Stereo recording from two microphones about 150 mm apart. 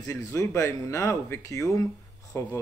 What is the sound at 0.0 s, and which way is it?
Speech, 20° left (ahead or behind).